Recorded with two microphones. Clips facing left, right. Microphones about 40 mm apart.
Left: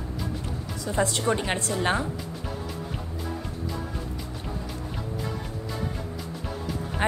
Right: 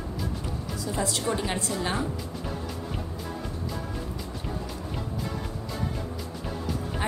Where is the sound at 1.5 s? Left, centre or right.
Left.